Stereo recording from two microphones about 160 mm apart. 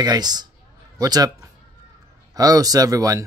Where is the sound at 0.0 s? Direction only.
25° right (ahead or behind).